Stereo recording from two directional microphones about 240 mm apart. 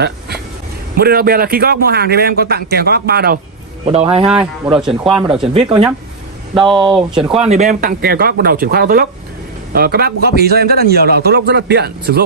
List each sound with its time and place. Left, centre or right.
0.9 s a man's voice: right
3.9 s speech: right
4.3 s speech: centre
6.5 s speech: centre
7.2 s a man's voice: right